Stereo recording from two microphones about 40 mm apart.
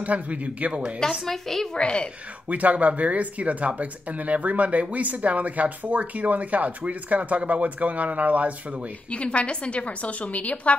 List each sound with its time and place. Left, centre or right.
0.0 s speech: right
1.2 s a woman's voice: centre
1.8 s speech: left
2.4 s speech: right
9.1 s a woman's voice: left